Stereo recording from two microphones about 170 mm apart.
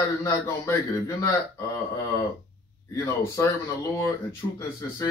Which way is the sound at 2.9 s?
15° left (ahead or behind).